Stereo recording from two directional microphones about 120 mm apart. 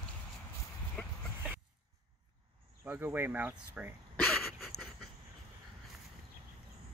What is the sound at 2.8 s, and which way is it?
Speech, 15° right (ahead or behind).